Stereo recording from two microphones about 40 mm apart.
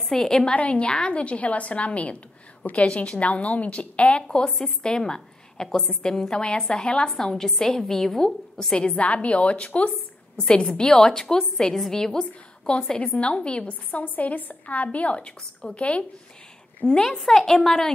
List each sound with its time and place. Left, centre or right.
0.1 s a woman's voice: centre
0.6 s a woman's voice: left
4.5 s a woman's voice: centre
4.8 s a woman's voice: left
8.7 s a woman's voice: left
10.4 s a woman's voice: left
14.0 s a woman's voice: left
17.2 s a woman's voice: centre
17.5 s a woman's voice: centre